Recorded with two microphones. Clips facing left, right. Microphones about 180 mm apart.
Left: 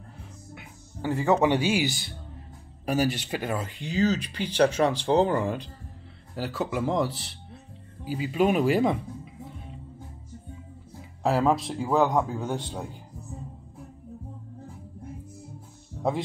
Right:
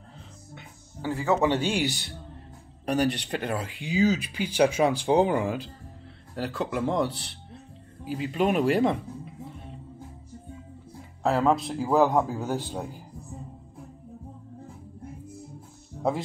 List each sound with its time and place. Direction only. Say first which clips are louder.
0.6 s a man's voice: left 2 dB; 20° left (ahead or behind); by 3.7 s centre (ahead or behind)
3.8 s speech: right 2 dB; 10° right (ahead or behind)
11.2 s a man's voice: even; centre (ahead or behind)